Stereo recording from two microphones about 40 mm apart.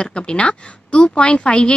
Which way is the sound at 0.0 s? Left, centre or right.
Left.